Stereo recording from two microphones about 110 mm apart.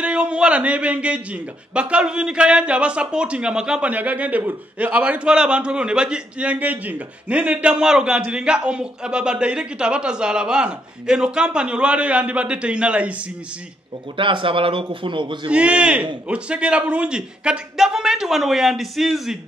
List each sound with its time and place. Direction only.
0.0 s a man's voice: 10° right (ahead or behind)
14.1 s a man's voice: 50° right (ahead or behind)
15.5 s a man's voice: 10° right (ahead or behind)